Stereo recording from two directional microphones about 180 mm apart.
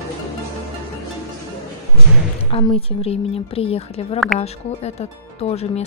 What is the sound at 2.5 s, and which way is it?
Speech, 30° left (ahead or behind).